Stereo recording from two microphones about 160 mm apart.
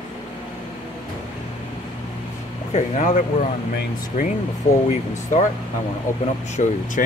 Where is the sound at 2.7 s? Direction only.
50° left (ahead or behind).